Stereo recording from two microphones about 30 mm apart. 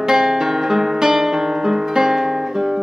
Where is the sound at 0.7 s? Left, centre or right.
Centre.